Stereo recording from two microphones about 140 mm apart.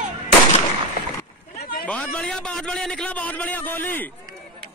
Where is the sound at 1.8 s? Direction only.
10° left (ahead or behind).